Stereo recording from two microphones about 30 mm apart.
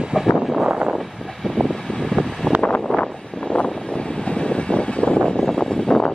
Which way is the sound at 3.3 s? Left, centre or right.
Left.